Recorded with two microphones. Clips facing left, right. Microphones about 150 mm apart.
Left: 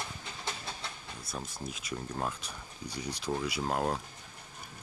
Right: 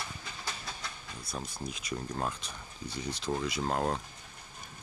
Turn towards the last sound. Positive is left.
turn(degrees=5)  # may be behind; listen again after turning